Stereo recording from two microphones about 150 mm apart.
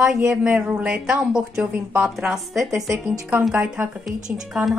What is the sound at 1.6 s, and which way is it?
Speech, 15° right (ahead or behind).